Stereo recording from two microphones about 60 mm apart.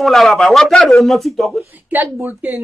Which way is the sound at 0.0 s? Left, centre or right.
Centre.